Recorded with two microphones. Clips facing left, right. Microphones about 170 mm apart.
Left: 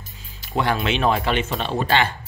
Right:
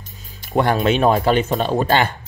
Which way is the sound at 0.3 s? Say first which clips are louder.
Right 5 dB; 50° right (ahead or behind).